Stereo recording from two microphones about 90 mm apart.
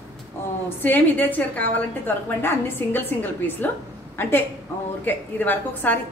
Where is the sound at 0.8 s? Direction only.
20° left (ahead or behind).